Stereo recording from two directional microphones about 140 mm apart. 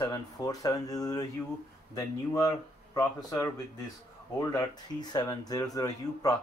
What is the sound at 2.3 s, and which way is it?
Speech, 25° left (ahead or behind).